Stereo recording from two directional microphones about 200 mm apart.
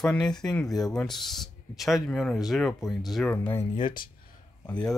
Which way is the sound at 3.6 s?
25° left (ahead or behind).